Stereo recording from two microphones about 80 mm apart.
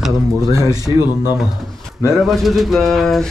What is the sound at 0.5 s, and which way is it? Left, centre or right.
Speech, right.